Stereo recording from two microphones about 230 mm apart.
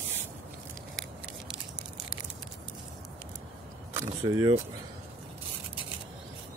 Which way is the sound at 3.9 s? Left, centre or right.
Centre.